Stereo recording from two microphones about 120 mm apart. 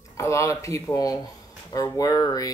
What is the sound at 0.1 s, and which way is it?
Speech, 25° left (ahead or behind).